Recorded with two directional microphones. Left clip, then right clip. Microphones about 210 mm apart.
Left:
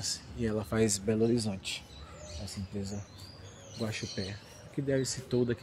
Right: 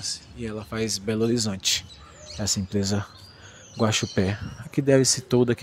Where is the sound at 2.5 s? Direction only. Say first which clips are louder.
Right 17 dB; 40° right (ahead or behind).